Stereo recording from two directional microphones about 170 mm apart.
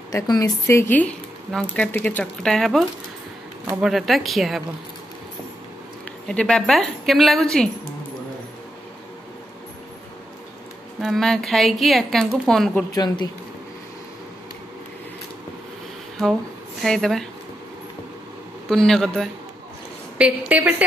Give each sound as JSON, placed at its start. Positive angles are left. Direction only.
{"t": 0.1, "sound": "speech", "side_deg": 20}
{"t": 6.2, "sound": "speech", "side_deg": 5}
{"t": 11.0, "sound": "speech", "side_deg": 0}
{"t": 12.9, "sound": "speech", "side_deg": 25}
{"t": 16.8, "sound": "speech", "side_deg": 0}
{"t": 18.7, "sound": "a woman's voice", "side_deg": 0}